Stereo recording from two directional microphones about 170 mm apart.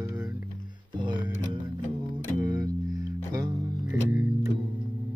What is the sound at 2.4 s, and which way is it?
Music, 20° right (ahead or behind).